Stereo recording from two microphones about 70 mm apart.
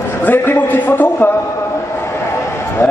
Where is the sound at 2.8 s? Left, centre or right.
Left.